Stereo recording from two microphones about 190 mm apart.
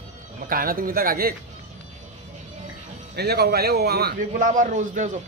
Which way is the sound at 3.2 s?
60° right (ahead or behind).